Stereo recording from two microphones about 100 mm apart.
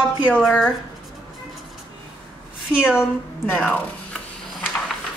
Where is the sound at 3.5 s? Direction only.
10° left (ahead or behind).